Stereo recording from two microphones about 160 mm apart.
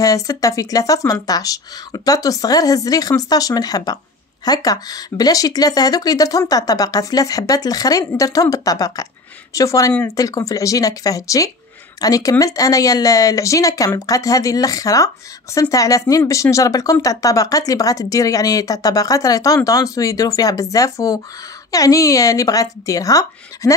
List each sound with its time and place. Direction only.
0.0 s speech: 20° left (ahead or behind)